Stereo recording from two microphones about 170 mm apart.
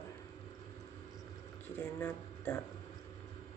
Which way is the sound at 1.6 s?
10° left (ahead or behind).